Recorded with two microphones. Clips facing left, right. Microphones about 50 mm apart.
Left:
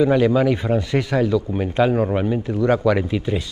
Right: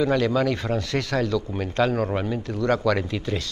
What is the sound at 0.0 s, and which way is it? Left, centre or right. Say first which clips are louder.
A man's voice: left 5 dB; centre.